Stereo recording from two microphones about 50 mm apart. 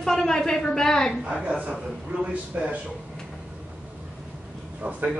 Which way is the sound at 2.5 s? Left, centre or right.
Right.